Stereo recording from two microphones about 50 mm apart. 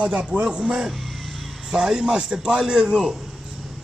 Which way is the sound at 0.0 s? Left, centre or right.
Right.